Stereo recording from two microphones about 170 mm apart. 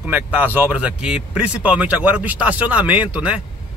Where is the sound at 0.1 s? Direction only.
10° right (ahead or behind).